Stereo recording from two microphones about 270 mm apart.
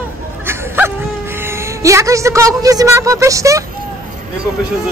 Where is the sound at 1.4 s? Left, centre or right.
Centre.